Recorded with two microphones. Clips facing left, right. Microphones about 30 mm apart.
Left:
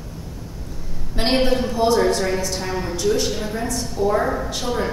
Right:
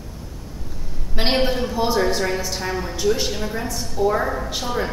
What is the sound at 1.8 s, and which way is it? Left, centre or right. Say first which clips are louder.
A woman's voice: left 2 dB; centre.